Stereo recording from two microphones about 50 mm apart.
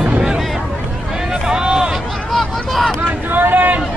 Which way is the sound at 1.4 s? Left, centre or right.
Centre.